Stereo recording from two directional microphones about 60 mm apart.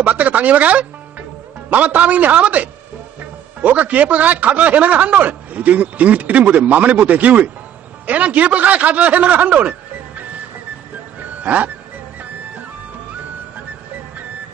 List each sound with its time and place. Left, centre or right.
0.0 s speech: right
11.4 s speech: right